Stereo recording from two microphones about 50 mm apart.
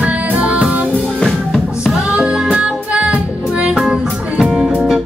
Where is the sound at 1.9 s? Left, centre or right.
Centre.